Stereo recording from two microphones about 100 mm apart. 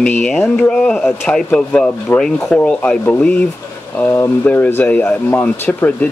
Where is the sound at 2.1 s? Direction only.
20° left (ahead or behind).